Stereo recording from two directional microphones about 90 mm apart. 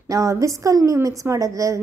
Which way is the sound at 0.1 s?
35° right (ahead or behind).